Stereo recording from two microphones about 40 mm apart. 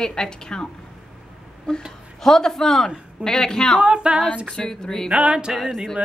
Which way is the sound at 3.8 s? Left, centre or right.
Right.